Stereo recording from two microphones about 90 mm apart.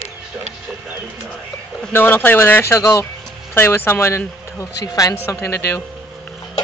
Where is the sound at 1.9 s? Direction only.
25° left (ahead or behind).